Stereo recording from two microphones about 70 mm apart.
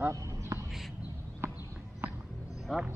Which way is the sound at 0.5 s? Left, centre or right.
Right.